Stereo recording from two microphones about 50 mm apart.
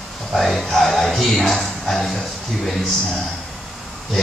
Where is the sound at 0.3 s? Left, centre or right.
Centre.